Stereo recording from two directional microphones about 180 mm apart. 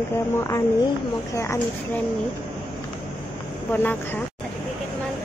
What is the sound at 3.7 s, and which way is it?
Speech, 10° left (ahead or behind).